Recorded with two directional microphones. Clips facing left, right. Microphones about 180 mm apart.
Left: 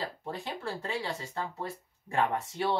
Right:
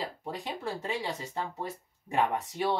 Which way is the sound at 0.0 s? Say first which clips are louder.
Even; 15° right (ahead or behind).